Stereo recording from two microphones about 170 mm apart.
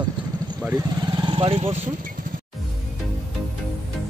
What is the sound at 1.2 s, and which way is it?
Speech, 30° right (ahead or behind).